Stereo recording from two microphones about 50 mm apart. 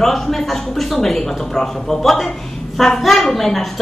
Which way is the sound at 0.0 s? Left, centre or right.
Centre.